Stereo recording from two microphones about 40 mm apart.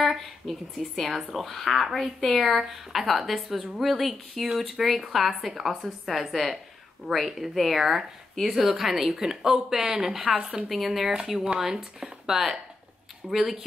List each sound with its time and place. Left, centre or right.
0.0 s a woman's voice: centre; by 10.6 s right
10.7 s a woman's voice: centre